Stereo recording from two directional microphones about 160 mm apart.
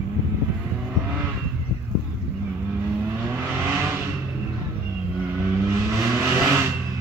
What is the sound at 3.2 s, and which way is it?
Vehicle, 15° right (ahead or behind).